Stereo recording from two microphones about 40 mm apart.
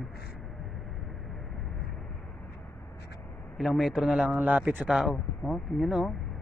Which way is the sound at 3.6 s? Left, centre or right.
Centre.